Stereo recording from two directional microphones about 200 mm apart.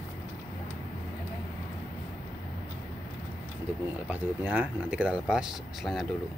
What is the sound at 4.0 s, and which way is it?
Speech, 10° right (ahead or behind).